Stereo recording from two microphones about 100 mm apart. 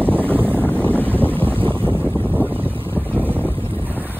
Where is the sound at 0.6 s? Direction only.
10° left (ahead or behind).